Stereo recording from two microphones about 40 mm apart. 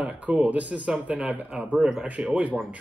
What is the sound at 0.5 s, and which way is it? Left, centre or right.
Speech, right.